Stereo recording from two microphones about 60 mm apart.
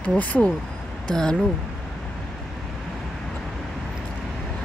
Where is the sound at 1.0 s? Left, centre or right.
Centre.